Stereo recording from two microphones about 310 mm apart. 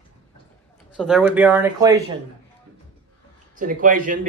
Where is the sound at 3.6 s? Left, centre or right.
Right.